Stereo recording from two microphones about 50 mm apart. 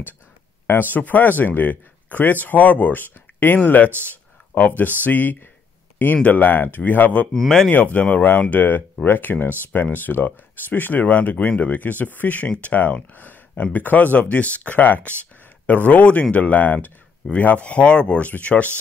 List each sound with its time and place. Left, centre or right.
0.7 s speech: left
7.3 s speech: centre
7.7 s speech: left